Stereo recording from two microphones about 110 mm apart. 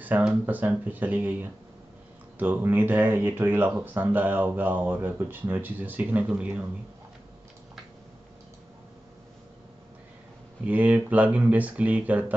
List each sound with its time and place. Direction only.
0.0 s speech: 10° right (ahead or behind)
10.7 s speech: 15° right (ahead or behind)